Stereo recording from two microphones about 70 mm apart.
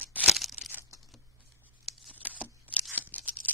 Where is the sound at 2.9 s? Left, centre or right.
Right.